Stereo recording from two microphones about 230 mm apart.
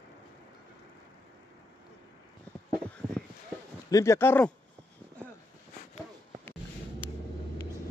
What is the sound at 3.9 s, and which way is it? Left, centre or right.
Speech, centre.